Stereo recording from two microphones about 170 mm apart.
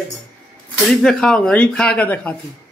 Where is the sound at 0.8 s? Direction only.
5° left (ahead or behind).